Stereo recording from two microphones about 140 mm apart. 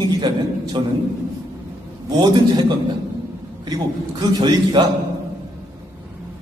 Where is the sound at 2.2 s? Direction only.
30° right (ahead or behind).